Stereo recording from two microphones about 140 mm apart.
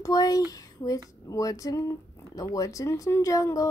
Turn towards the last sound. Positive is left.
turn(degrees=25)  # may be behind; listen again after turning